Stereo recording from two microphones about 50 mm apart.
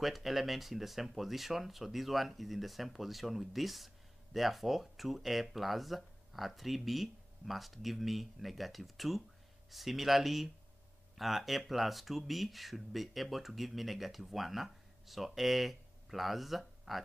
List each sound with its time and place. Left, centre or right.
0.0 s speech: centre